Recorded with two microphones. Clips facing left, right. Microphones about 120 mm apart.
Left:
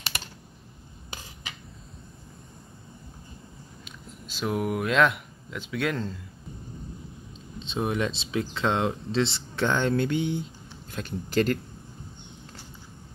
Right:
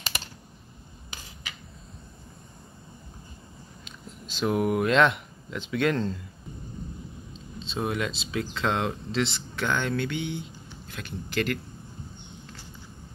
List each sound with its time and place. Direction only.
3.8 s speech: 5° left (ahead or behind)
7.5 s speech: 20° left (ahead or behind); by 11.6 s 35° left (ahead or behind)